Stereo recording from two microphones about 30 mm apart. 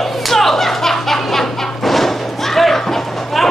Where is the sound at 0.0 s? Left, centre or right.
Centre.